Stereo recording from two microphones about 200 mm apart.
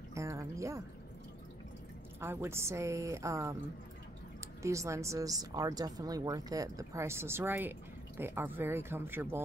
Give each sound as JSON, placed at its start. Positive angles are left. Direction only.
{"t": 0.1, "sound": "a sound", "side_deg": -15}
{"t": 2.1, "sound": "a woman's voice", "side_deg": -10}
{"t": 4.6, "sound": "a woman's voice", "side_deg": -15}